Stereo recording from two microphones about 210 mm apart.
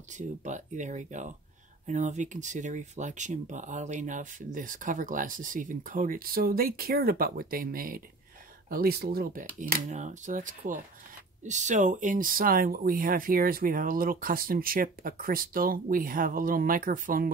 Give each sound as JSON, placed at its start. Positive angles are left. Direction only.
{"t": 0.1, "sound": "speech", "side_deg": -35}